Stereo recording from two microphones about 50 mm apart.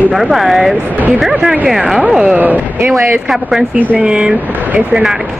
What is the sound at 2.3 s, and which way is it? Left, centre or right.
Speech, right.